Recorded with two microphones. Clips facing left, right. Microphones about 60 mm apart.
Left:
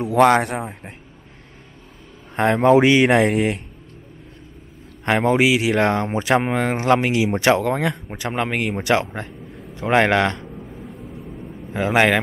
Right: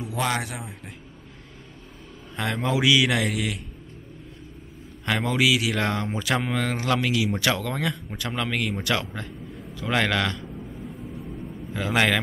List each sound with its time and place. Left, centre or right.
0.0 s speech: left
2.3 s speech: left
5.0 s speech: left
10.9 s vehicle: centre
11.7 s speech: left